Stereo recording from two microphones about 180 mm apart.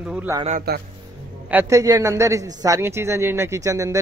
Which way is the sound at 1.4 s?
15° right (ahead or behind).